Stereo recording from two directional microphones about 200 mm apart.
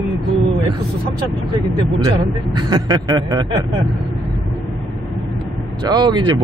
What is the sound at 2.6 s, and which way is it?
Speech, 20° right (ahead or behind).